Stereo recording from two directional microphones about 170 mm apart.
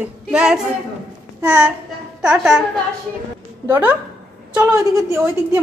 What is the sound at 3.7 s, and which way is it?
A woman's voice, 15° right (ahead or behind).